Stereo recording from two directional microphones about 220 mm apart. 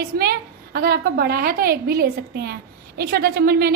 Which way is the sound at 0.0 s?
45° right (ahead or behind).